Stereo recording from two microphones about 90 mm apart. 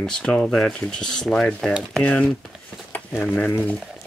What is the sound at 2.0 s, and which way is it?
Speech, 15° left (ahead or behind).